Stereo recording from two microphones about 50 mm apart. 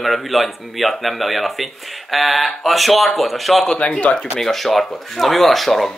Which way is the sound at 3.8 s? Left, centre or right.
Left.